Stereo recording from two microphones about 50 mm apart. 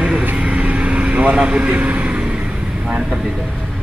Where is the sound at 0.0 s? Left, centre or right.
Right.